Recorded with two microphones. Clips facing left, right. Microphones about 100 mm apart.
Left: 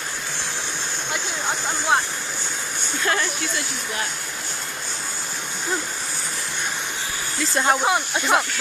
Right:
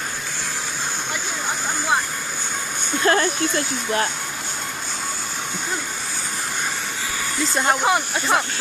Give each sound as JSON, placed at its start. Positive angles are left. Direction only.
{"t": 3.0, "sound": "speech", "side_deg": -45}
{"t": 7.6, "sound": "speech", "side_deg": 0}